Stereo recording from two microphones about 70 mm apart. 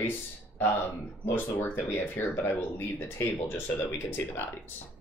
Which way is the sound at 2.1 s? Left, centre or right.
Left.